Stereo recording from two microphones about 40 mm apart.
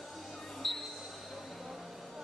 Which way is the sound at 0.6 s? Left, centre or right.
Centre.